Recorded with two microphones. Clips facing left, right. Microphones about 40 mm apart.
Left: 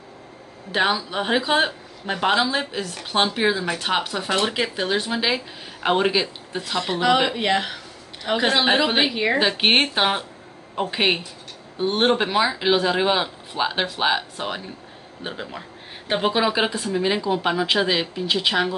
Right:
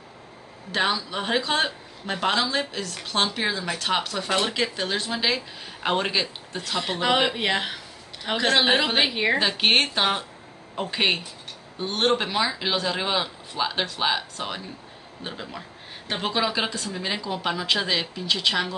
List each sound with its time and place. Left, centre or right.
0.7 s speech: centre
6.8 s a woman's voice: centre
9.4 s speech: centre